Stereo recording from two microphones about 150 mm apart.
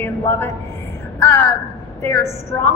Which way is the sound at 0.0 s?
15° left (ahead or behind).